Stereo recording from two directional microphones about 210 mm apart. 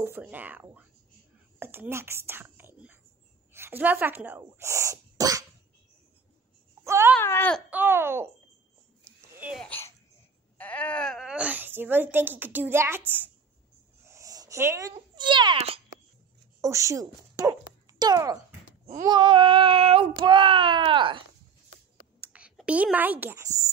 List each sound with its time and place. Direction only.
0.0 s speech: 10° right (ahead or behind)
6.8 s a sound: 15° right (ahead or behind)
7.2 s speech: 10° left (ahead or behind)
7.7 s speech: 10° right (ahead or behind)
9.0 s a sound: 10° right (ahead or behind)
9.6 s a child's voice: 10° left (ahead or behind); by 15.8 s 30° right (ahead or behind)
16.6 s speech: 15° right (ahead or behind)
18.7 s a sound: 35° right (ahead or behind)
19.0 s child singing: 20° right (ahead or behind)
22.2 s speech: 5° right (ahead or behind)